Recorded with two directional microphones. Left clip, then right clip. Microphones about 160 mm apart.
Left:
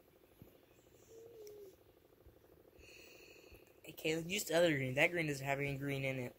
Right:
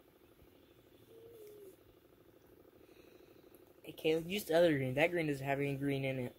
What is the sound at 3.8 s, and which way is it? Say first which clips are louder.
Speech: right 5 dB; 55° right (ahead or behind).